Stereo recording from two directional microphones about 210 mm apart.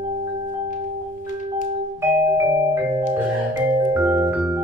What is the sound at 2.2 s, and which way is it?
Music, 15° right (ahead or behind).